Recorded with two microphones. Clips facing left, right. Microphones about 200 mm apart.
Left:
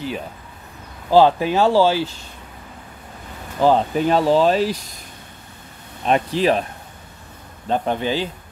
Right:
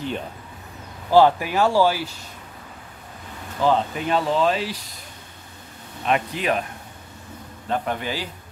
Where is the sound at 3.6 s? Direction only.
35° left (ahead or behind).